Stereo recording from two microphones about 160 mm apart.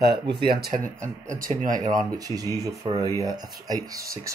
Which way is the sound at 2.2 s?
20° right (ahead or behind).